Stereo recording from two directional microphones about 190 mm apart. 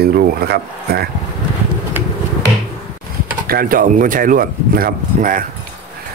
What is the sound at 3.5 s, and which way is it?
Speech, 50° right (ahead or behind).